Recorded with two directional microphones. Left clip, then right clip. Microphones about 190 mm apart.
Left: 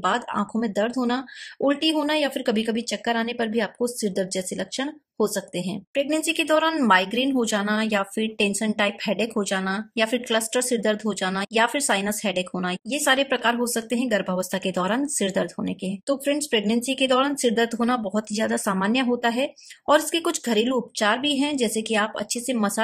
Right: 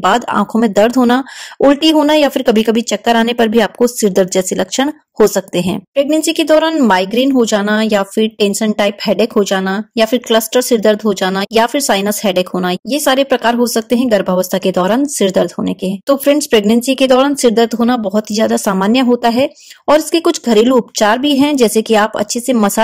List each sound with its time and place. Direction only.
0.0 s speech: 30° right (ahead or behind)